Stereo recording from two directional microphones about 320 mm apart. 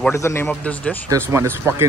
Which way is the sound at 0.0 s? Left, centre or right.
Centre.